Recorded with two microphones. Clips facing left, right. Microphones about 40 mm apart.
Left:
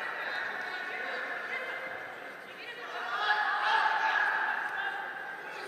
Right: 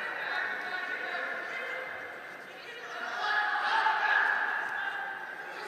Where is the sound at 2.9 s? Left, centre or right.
Left.